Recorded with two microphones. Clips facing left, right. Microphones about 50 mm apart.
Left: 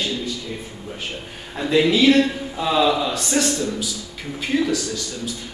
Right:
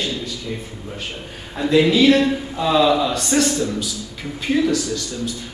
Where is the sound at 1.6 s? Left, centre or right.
Centre.